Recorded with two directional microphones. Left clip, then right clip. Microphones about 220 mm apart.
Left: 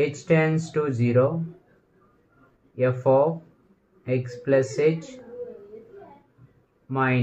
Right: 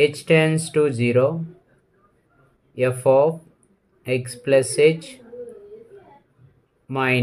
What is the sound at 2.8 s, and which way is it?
Speech, 55° right (ahead or behind).